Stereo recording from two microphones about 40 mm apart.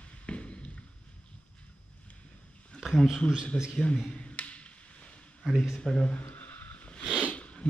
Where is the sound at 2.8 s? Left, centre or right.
Centre.